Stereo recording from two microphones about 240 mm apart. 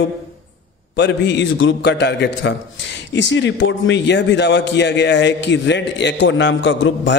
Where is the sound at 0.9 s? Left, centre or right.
Left.